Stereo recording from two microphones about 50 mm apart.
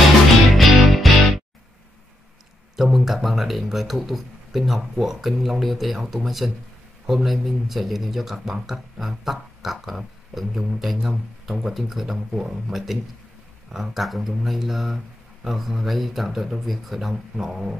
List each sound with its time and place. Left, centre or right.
0.6 s music: centre
2.7 s speech: centre